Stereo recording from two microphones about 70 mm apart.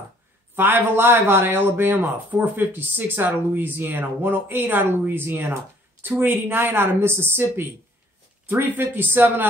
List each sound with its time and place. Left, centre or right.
0.6 s a woman's voice: right